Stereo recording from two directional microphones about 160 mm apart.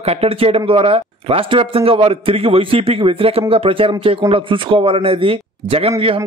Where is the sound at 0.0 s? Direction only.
40° right (ahead or behind).